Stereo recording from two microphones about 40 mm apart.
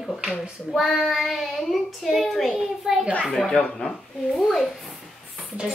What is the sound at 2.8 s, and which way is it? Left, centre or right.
Child singing, centre.